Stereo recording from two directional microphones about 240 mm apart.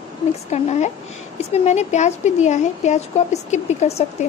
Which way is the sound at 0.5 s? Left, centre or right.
Left.